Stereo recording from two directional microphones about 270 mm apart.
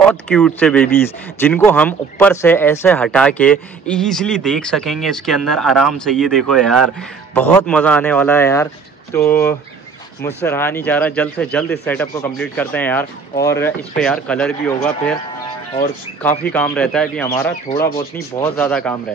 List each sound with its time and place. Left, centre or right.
0.0 s speech: centre
16.2 s speech: centre
17.6 s speech: left
18.4 s speech: centre